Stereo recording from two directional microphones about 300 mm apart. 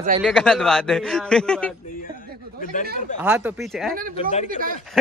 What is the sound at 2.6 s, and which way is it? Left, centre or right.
Speech, left.